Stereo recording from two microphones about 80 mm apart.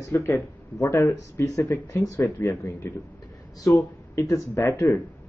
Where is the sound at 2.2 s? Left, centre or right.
Centre.